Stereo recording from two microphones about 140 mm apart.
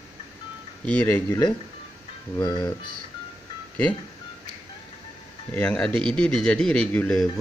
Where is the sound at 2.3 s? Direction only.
35° left (ahead or behind).